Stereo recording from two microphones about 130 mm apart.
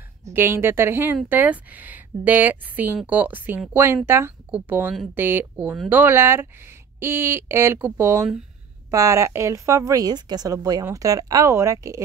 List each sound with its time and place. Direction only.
0.3 s a woman's voice: 20° right (ahead or behind)